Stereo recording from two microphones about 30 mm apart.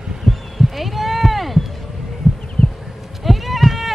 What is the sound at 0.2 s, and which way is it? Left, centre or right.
Heart sounds, centre.